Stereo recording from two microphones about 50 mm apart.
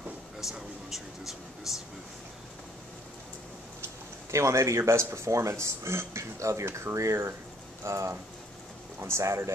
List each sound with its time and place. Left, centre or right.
0.4 s a sound: centre
4.3 s speech: right
9.0 s speech: right